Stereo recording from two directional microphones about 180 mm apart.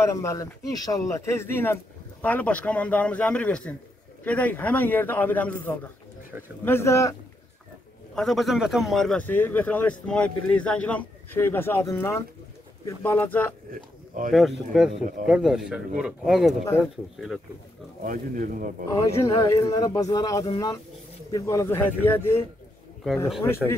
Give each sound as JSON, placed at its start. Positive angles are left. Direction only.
{"t": 0.0, "sound": "a man's voice", "side_deg": 15}
{"t": 6.6, "sound": "a man's voice", "side_deg": 15}
{"t": 8.1, "sound": "a man's voice", "side_deg": 0}
{"t": 14.3, "sound": "speech", "side_deg": 0}
{"t": 18.0, "sound": "speech", "side_deg": -50}
{"t": 19.1, "sound": "a man's voice", "side_deg": 15}